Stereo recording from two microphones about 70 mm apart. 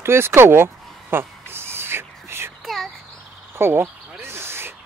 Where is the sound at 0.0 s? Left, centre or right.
Right.